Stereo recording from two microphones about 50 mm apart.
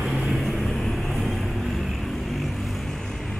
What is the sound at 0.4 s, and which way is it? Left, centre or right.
Vehicle, centre.